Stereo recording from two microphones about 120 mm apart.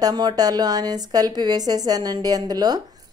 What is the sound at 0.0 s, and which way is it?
A woman's voice, 40° right (ahead or behind).